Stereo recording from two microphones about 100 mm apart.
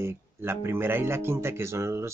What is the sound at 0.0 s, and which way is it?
Speech, 25° right (ahead or behind).